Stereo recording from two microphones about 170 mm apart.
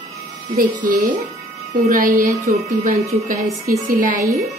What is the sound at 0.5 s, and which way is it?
Speech, 55° right (ahead or behind).